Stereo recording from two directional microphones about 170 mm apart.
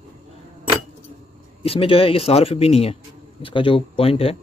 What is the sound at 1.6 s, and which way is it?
A man's voice, 35° left (ahead or behind).